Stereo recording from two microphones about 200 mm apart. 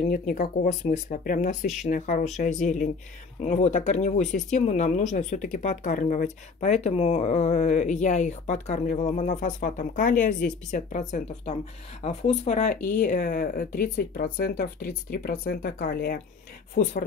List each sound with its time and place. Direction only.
0.1 s speech: 45° left (ahead or behind)